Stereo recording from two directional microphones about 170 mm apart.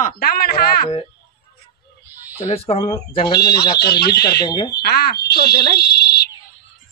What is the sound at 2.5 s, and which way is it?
Speech, 35° left (ahead or behind).